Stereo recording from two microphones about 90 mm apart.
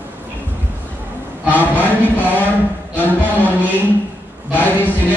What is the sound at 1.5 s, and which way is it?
Chant, 20° left (ahead or behind).